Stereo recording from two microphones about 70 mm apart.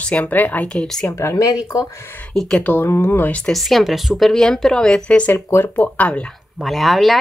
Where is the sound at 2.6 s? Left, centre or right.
Left.